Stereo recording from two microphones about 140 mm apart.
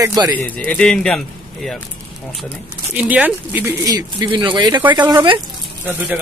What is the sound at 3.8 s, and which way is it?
Speech, 30° right (ahead or behind).